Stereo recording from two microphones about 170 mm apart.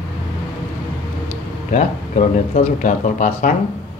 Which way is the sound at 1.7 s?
45° left (ahead or behind).